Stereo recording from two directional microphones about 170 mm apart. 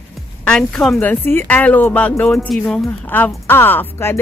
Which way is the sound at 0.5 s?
5° left (ahead or behind).